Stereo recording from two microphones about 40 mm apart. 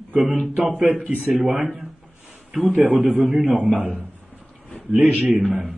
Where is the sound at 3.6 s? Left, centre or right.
Right.